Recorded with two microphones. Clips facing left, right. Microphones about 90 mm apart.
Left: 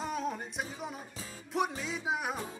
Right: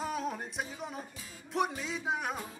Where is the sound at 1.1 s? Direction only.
30° left (ahead or behind).